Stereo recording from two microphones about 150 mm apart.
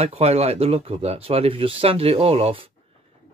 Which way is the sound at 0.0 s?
45° right (ahead or behind).